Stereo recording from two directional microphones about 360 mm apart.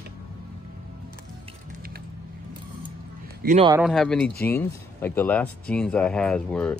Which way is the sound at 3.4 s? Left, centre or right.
Centre.